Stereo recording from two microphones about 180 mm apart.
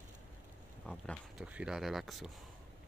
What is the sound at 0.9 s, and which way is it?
Speech, centre (ahead or behind).